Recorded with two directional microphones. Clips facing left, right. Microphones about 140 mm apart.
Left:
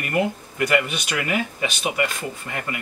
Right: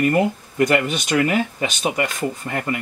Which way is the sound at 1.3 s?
35° right (ahead or behind).